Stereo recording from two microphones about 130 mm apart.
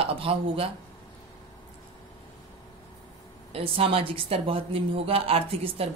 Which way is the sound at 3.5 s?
45° right (ahead or behind).